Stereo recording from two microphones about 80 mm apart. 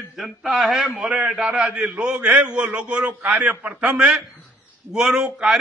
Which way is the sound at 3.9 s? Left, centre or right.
Centre.